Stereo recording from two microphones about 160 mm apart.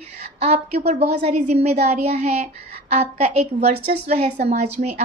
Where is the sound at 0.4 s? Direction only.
40° right (ahead or behind).